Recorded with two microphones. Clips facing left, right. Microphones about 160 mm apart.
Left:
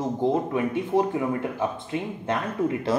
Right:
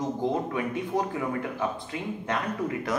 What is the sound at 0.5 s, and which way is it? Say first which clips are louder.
Speech: left 5 dB; 25° left (ahead or behind).